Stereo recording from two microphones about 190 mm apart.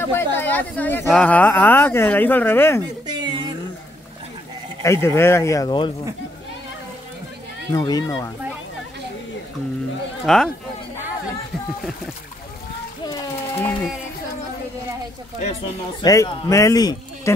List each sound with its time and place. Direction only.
0.1 s chatter: 10° left (ahead or behind)
1.0 s speech: 5° left (ahead or behind)
3.1 s a sound: 20° right (ahead or behind)
5.0 s speech: 15° left (ahead or behind)
7.7 s speech: 20° left (ahead or behind)
10.2 s speech: centre (ahead or behind)
13.0 s ratchet: 15° left (ahead or behind)
16.0 s speech: 20° left (ahead or behind)